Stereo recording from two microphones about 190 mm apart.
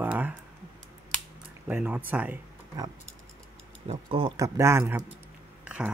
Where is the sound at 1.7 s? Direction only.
10° right (ahead or behind).